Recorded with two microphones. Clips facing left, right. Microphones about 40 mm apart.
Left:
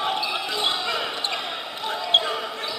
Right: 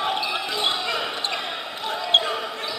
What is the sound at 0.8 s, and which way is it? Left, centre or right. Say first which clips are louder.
Basketball bounce: even; centre.